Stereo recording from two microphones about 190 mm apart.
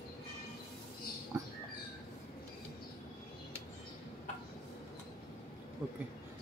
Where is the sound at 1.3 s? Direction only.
15° right (ahead or behind).